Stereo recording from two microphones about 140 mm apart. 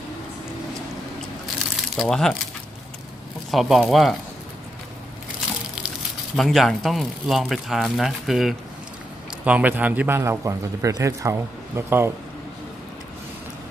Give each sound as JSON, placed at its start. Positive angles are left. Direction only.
{"t": 2.0, "sound": "speech", "side_deg": 5}
{"t": 3.5, "sound": "speech", "side_deg": 0}
{"t": 6.3, "sound": "a man's voice", "side_deg": 0}